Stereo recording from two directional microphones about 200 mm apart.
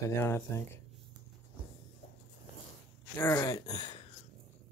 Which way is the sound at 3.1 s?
15° left (ahead or behind).